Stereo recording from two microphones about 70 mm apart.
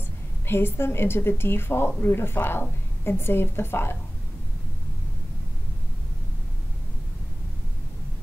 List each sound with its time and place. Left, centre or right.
0.5 s a woman's voice: left